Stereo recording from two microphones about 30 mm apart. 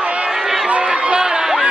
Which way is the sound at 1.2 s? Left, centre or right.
Right.